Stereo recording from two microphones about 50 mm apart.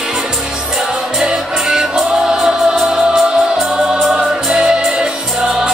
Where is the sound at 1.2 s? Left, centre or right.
Centre.